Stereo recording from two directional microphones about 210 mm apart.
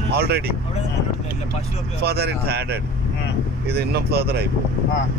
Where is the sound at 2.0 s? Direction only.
50° right (ahead or behind).